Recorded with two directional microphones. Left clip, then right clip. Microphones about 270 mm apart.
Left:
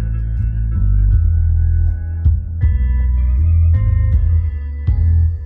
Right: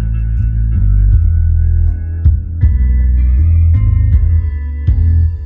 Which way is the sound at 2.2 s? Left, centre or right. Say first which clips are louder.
Right 4 dB; centre.